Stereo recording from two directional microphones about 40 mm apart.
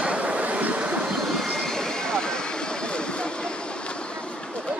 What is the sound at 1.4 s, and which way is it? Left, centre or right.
Vehicle, centre.